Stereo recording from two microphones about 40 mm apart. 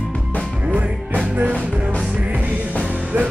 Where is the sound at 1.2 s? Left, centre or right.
Right.